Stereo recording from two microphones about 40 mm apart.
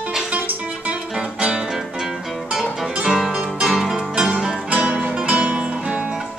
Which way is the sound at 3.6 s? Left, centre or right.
Centre.